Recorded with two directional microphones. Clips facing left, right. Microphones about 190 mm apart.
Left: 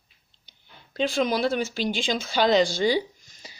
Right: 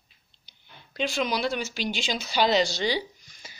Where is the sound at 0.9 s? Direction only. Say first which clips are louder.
Left 4 dB; 45° left (ahead or behind).